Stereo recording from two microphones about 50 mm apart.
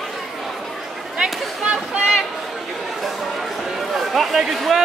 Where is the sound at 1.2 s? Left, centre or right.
Centre.